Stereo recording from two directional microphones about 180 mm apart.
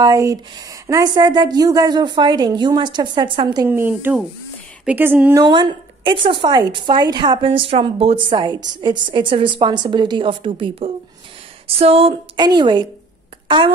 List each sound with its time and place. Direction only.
0.0 s speech: 20° right (ahead or behind)
3.6 s speech: 10° right (ahead or behind)
5.4 s speech: 25° right (ahead or behind)